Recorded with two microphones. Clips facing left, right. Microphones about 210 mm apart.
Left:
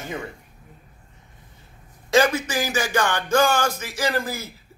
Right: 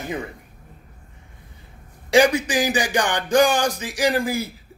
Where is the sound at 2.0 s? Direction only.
15° right (ahead or behind).